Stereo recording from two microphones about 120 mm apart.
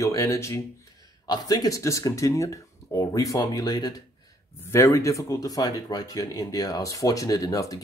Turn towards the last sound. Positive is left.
turn(degrees=30)  # may be behind; listen again after turning